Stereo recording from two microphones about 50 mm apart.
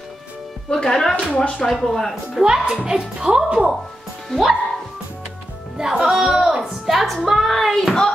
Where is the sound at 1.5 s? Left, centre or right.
Centre.